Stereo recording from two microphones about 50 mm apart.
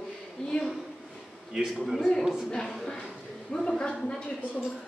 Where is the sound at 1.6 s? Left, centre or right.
Centre.